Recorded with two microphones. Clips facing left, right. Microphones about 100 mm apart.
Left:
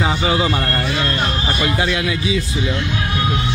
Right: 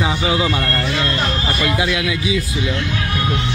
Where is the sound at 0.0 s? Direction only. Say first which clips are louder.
Left 1 dB; 35° left (ahead or behind).